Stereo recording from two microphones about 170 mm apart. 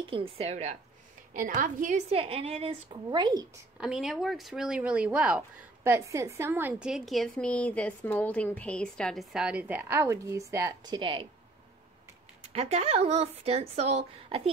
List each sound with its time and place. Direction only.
0.1 s a woman's voice: 35° right (ahead or behind)
3.8 s a woman's voice: 5° right (ahead or behind)
5.9 s a woman's voice: 20° right (ahead or behind)
11.0 s speech: 30° right (ahead or behind)
12.5 s a woman's voice: 35° right (ahead or behind)